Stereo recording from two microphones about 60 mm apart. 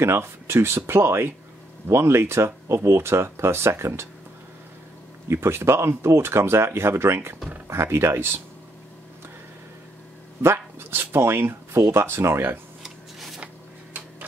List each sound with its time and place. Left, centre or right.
0.0 s speech: right
5.3 s speech: right
10.4 s speech: right